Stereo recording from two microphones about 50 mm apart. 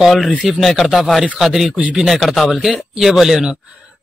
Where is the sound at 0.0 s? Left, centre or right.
Centre.